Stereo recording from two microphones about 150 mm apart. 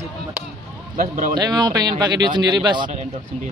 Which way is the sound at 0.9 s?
45° right (ahead or behind).